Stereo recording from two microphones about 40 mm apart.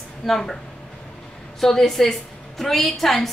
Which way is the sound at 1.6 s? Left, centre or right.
Centre.